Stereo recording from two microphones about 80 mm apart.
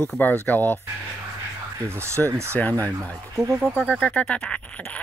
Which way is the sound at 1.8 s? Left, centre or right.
Right.